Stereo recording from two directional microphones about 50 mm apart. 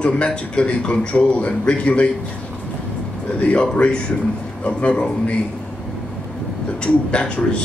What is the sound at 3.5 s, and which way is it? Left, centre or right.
Speech, left.